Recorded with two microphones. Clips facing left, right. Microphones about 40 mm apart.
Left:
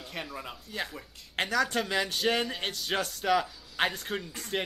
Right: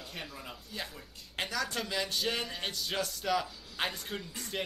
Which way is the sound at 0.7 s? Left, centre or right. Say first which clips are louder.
Left 6 dB; left.